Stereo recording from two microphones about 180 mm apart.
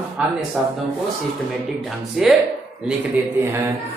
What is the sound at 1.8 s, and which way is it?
Speech, centre (ahead or behind).